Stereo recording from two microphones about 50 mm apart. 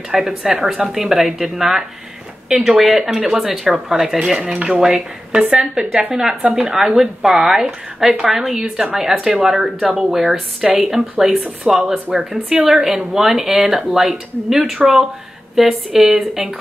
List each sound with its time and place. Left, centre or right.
0.1 s speech: centre